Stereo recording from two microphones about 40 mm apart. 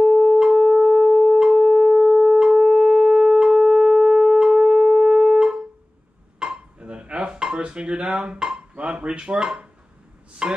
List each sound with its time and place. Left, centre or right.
0.0 s wind instrument: centre
6.4 s dishes: right
8.8 s speech: right